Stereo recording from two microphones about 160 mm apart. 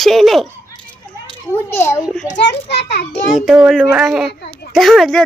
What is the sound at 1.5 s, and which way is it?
Speech, 15° left (ahead or behind).